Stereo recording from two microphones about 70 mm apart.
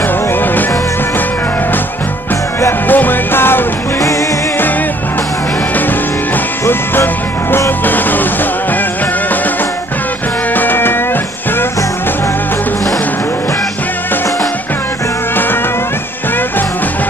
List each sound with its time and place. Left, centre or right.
2.9 s music: left
6.6 s music: left
10.5 s music: left